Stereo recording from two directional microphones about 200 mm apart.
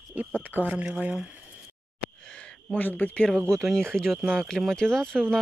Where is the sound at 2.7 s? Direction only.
10° left (ahead or behind).